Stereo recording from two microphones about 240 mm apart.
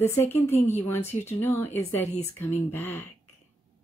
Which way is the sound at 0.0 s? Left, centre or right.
Centre.